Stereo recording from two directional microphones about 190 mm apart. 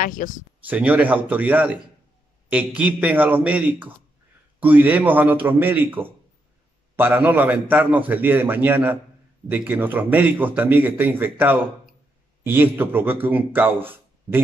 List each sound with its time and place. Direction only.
0.0 s speech: 45° left (ahead or behind)
0.7 s a man's voice: 10° right (ahead or behind)
7.0 s a man's voice: 10° right (ahead or behind)